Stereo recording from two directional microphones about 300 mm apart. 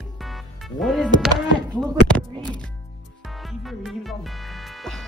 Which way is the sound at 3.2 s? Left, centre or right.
Centre.